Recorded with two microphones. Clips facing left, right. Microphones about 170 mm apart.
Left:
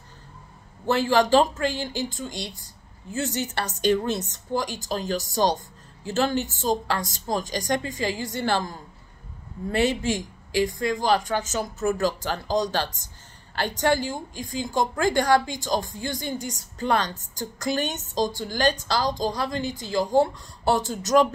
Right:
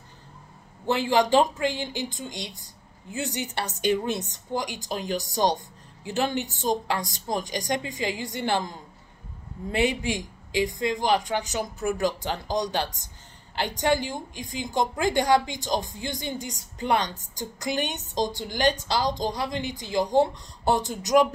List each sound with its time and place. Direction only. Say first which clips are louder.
0.8 s a woman's voice: left 2 dB; 15° right (ahead or behind)